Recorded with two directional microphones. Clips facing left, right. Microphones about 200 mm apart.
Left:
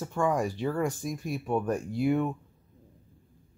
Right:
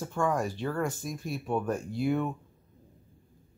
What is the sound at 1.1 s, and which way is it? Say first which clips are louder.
Speech: left 2 dB; centre (ahead or behind).